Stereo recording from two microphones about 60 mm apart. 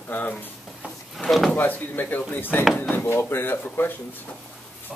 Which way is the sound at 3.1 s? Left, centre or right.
Left.